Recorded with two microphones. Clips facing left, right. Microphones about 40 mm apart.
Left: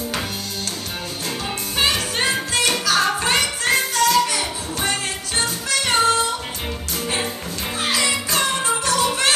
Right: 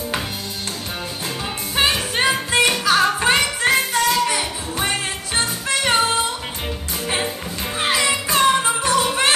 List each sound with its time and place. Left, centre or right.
1.8 s music: right
7.8 s music: right